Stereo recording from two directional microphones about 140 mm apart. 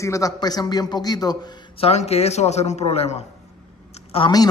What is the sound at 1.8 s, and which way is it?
Speech, 50° left (ahead or behind).